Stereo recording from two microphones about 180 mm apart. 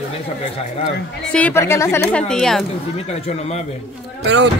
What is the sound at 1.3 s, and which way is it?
Speech, 10° left (ahead or behind).